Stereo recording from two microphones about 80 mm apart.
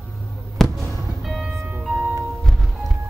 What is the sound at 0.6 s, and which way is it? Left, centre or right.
Fireworks, centre.